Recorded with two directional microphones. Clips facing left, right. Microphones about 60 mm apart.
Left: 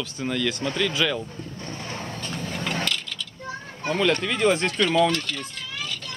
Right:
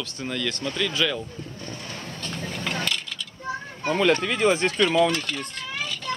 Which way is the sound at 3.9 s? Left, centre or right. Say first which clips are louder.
Right 1 dB; centre.